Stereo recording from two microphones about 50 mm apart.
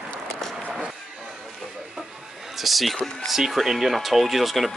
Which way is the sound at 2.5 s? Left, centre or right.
Centre.